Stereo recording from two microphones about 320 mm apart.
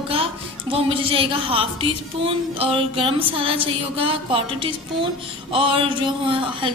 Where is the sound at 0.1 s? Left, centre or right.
Centre.